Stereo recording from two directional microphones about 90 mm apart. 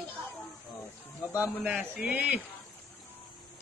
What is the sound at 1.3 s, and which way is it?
A man's voice, 15° right (ahead or behind).